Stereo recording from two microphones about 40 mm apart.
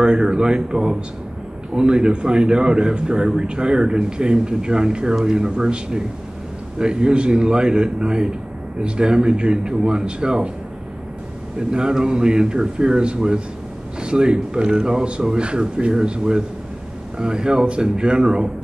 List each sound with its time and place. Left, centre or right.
0.0 s a man's voice: right
11.7 s a man's voice: centre